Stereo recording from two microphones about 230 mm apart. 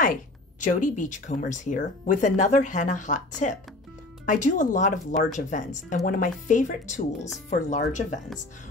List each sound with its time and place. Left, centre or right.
0.0 s speech: left